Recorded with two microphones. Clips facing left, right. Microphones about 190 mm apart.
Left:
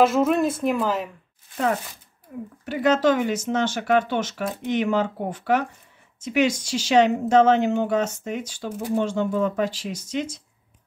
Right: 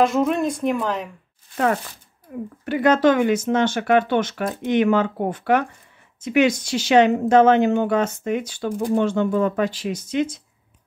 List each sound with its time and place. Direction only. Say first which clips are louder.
0.0 s a woman's voice: even; 5° left (ahead or behind)
2.6 s speech: right 3 dB; 60° right (ahead or behind)